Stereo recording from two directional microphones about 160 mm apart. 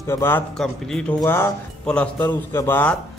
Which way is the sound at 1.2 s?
15° left (ahead or behind).